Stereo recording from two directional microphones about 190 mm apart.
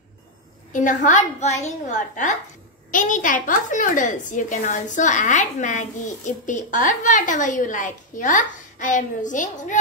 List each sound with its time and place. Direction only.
0.7 s a woman's voice: 40° left (ahead or behind)